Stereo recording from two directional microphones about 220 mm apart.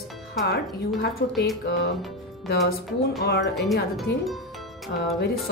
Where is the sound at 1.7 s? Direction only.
50° left (ahead or behind).